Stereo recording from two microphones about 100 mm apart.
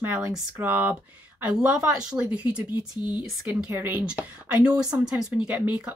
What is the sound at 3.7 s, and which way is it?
Speech, 20° right (ahead or behind).